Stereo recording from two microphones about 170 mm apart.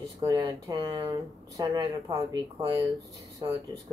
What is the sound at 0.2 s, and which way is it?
Speech, 20° right (ahead or behind).